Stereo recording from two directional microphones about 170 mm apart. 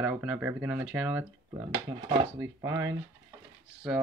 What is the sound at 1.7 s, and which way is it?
Speech, 30° right (ahead or behind).